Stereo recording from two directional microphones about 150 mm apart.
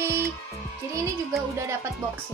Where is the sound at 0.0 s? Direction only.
20° right (ahead or behind).